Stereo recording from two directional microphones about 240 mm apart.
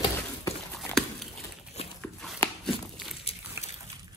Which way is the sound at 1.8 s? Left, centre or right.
Left.